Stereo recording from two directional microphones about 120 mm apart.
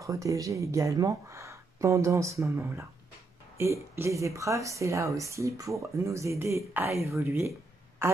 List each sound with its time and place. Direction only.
0.0 s a woman's voice: 25° right (ahead or behind)